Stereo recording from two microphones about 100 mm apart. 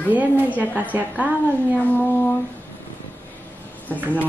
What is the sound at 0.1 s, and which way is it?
A woman's voice, 15° right (ahead or behind).